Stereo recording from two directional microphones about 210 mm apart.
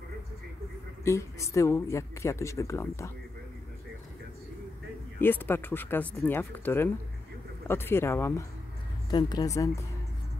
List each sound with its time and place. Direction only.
1.0 s speech: 15° left (ahead or behind)
5.2 s speech: 10° left (ahead or behind)